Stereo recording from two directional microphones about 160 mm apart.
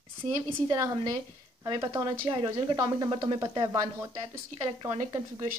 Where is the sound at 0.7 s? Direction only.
20° right (ahead or behind).